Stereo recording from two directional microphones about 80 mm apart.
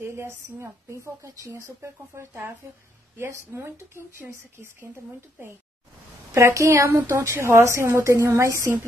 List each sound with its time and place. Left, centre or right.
0.0 s a woman's voice: right
1.0 s a woman's voice: right
6.3 s a woman's voice: right